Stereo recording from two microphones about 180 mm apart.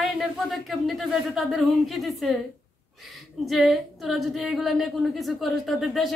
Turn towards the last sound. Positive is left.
turn(degrees=0)  # may be behind; listen again after turning